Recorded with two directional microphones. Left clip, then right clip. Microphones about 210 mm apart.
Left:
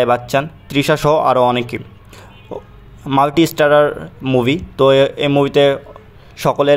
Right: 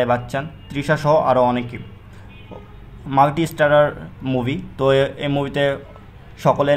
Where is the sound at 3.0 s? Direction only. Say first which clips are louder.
Left 3 dB; 40° left (ahead or behind).